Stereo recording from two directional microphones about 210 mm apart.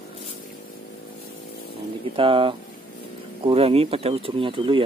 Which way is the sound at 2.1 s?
25° right (ahead or behind).